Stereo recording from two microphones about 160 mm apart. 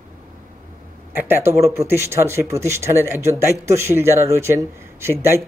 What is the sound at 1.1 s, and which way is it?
Speech, 15° right (ahead or behind).